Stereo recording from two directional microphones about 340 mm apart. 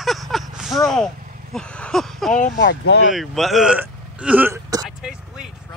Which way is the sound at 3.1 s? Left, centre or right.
Centre.